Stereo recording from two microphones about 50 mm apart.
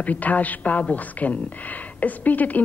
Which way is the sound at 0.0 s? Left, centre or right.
Left.